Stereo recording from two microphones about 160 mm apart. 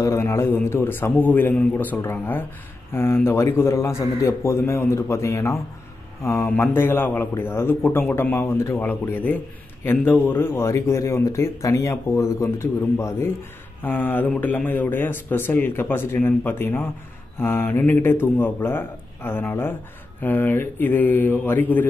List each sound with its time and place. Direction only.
0.0 s speech: 15° left (ahead or behind)